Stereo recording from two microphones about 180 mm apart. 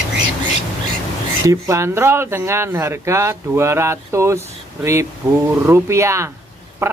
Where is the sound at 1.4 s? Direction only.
15° right (ahead or behind).